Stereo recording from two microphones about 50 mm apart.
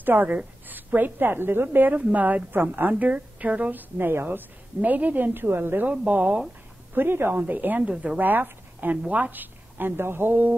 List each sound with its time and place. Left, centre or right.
0.0 s a woman's voice: right
4.0 s a woman's voice: right
4.8 s a woman's voice: right
5.9 s speech: right
7.0 s a woman's voice: right
7.3 s a woman's voice: right